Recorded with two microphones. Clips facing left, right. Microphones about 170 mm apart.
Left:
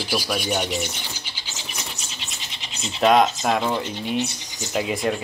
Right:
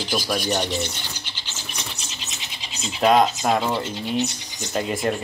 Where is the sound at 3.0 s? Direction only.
Centre (ahead or behind).